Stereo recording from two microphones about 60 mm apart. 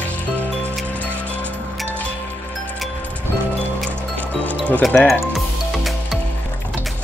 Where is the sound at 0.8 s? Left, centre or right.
Left.